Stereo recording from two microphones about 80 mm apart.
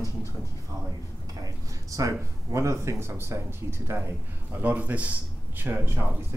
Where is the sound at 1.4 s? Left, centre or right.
Right.